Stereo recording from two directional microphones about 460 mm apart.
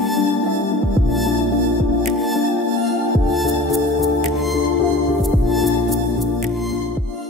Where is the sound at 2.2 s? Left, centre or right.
Centre.